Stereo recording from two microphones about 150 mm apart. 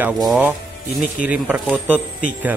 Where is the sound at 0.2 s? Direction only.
Centre (ahead or behind).